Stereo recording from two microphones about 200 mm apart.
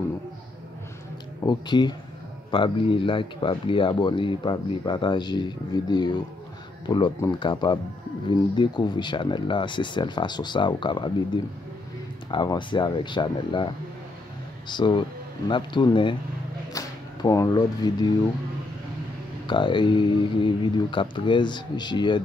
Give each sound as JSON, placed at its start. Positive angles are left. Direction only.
{"t": 1.4, "sound": "speech", "side_deg": 20}
{"t": 12.3, "sound": "speech", "side_deg": 25}
{"t": 14.7, "sound": "speech", "side_deg": 25}
{"t": 19.4, "sound": "speech", "side_deg": 25}